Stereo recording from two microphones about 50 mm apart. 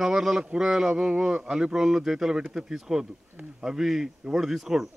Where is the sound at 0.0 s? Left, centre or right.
Centre.